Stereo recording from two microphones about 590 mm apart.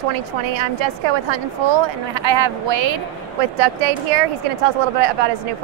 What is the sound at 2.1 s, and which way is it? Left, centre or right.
Speech, right.